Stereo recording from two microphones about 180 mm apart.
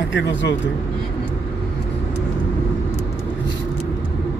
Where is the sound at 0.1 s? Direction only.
85° left.